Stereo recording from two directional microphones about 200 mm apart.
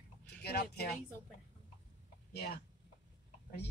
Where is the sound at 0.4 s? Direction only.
50° left (ahead or behind).